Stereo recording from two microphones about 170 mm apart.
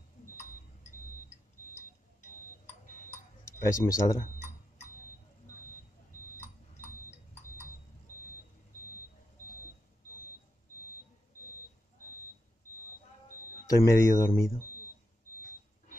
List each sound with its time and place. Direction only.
3.5 s speech: 15° left (ahead or behind)
6.1 s a sound: 55° left (ahead or behind)
13.7 s speech: 20° left (ahead or behind)